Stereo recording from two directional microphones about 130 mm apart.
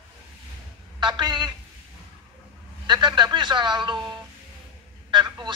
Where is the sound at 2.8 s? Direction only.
35° right (ahead or behind).